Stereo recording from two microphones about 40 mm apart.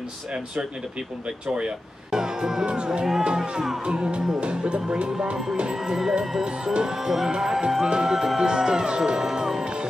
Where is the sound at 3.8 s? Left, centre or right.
Right.